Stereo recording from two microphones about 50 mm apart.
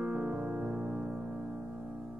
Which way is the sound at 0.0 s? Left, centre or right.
Right.